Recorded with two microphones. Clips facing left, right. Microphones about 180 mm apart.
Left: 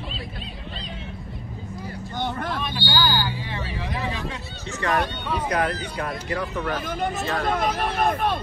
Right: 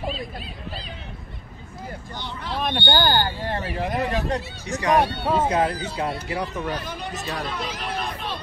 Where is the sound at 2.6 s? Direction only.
60° right (ahead or behind).